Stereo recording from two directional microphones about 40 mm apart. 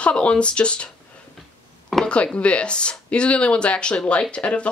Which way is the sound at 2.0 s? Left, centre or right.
Left.